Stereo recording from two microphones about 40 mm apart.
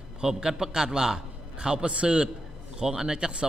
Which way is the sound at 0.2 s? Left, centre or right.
Centre.